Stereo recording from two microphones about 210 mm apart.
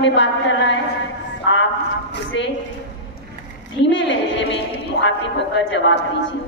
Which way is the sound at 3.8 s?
60° left (ahead or behind).